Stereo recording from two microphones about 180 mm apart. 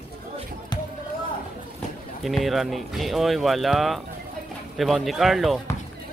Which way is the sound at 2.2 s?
Centre (ahead or behind).